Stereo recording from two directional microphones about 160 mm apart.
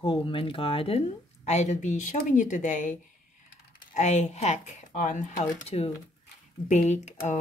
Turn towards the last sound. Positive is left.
turn(degrees=45)  # may be behind; listen again after turning